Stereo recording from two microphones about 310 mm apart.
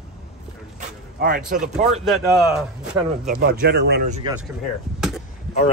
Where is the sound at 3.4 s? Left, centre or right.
Right.